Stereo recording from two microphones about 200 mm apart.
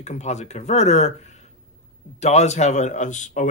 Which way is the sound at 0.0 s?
35° left (ahead or behind).